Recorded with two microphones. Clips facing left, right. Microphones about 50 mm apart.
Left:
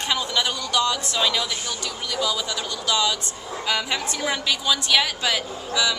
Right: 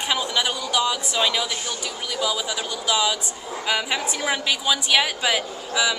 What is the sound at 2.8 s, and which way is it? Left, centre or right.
Speech, centre.